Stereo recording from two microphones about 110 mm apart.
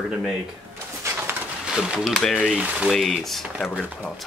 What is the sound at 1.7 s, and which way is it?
Speech, 5° right (ahead or behind).